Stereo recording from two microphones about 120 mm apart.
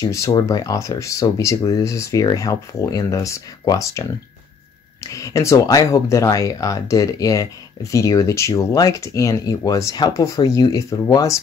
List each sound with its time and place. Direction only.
0.0 s speech: 25° left (ahead or behind)
5.0 s speech: 25° left (ahead or behind)